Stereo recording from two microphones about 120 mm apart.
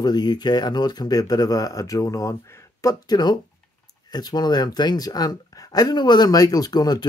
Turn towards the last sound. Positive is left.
turn(degrees=35)  # may be behind; listen again after turning